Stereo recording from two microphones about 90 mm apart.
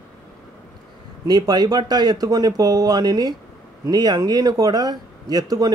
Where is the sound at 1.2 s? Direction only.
50° right (ahead or behind).